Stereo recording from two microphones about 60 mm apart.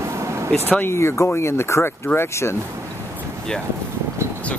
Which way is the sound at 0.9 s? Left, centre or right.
Left.